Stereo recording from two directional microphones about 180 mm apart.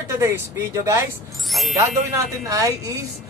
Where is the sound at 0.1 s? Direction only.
15° right (ahead or behind).